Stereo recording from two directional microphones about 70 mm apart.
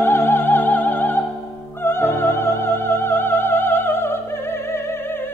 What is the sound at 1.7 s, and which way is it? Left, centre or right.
Music, left.